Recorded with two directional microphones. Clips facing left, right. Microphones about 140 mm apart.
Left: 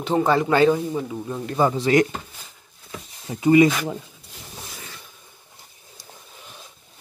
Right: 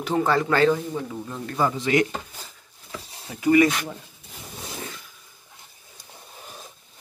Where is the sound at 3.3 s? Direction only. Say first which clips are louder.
Left 3 dB; 25° left (ahead or behind).